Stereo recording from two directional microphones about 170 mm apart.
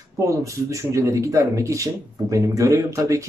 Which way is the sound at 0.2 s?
20° right (ahead or behind).